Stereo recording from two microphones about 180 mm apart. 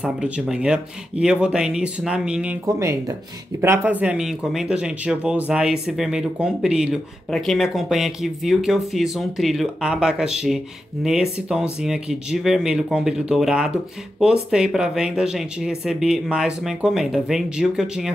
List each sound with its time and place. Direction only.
0.0 s speech: 5° right (ahead or behind)